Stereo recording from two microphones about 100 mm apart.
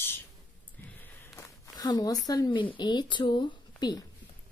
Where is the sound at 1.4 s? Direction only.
40° left (ahead or behind).